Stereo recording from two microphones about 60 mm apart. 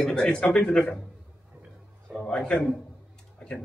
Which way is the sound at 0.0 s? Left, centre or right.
Centre.